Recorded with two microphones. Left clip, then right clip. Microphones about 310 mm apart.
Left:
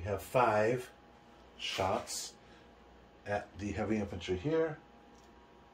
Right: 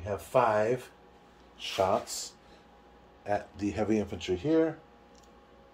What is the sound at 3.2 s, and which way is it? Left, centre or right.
Speech, right.